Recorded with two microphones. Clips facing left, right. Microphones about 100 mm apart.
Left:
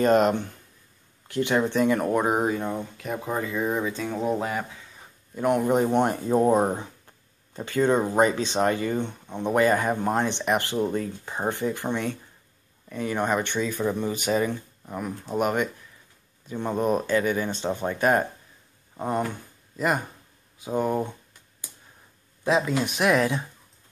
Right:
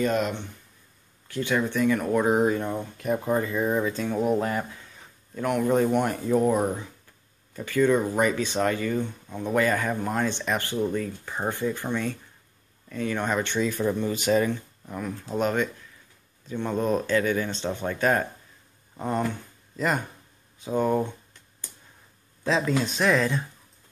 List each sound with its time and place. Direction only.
0.0 s speech: 45° left (ahead or behind)
1.2 s speech: 25° left (ahead or behind); by 4.6 s 10° left (ahead or behind)
5.3 s speech: 20° left (ahead or behind); by 6.9 s 35° left (ahead or behind)
7.5 s speech: 25° left (ahead or behind)
13.6 s speech: 5° left (ahead or behind)
20.5 s a sound: 10° left (ahead or behind)
22.4 s speech: 15° left (ahead or behind)